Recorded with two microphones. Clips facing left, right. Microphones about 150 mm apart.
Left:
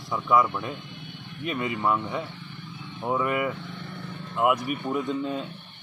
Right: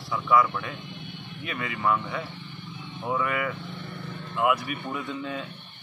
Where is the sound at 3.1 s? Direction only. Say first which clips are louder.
Left 2 dB; 5° left (ahead or behind).